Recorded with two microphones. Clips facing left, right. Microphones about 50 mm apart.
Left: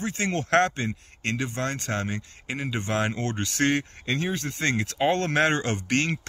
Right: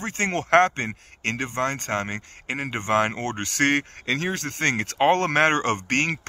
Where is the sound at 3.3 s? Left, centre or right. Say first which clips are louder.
Right 3 dB; right.